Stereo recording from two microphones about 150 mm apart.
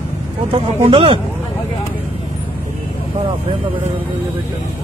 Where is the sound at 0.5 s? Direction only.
40° right (ahead or behind).